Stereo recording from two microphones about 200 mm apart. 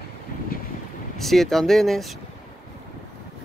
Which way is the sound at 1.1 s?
Centre (ahead or behind).